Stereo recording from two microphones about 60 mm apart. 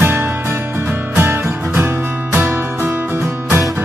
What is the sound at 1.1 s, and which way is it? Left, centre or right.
Music, right.